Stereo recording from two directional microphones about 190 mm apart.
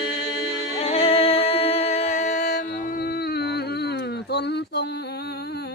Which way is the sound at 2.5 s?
55° left (ahead or behind).